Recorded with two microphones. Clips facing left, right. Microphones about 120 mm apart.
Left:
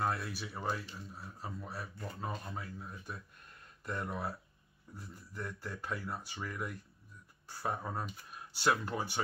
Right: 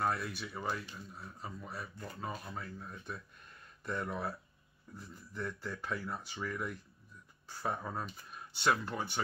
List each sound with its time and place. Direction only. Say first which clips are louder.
0.0 s speech: right 1 dB; centre (ahead or behind)